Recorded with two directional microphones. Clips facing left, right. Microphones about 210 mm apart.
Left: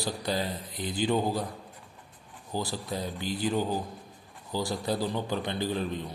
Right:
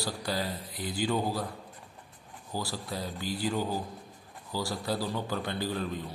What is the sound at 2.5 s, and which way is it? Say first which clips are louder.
A man's voice: left 3 dB; 20° left (ahead or behind).